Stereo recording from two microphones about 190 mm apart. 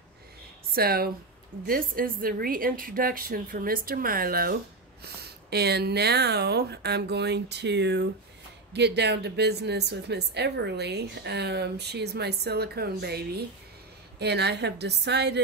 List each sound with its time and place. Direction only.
0.7 s a woman's voice: 55° right (ahead or behind)